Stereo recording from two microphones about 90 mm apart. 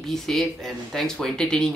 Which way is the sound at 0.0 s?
5° left (ahead or behind).